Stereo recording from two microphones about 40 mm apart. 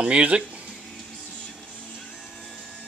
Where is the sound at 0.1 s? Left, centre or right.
Right.